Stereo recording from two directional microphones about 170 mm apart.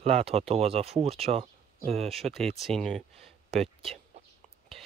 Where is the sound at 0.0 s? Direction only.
35° right (ahead or behind).